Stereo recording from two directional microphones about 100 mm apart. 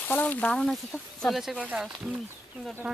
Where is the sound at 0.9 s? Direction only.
25° left (ahead or behind).